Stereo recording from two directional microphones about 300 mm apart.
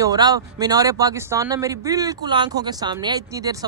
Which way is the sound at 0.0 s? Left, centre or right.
Centre.